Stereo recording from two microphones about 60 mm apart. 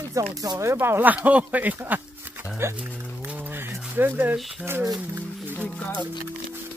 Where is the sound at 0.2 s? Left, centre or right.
Right.